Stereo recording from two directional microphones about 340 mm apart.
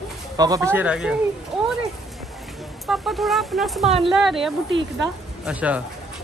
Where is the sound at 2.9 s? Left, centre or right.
Centre.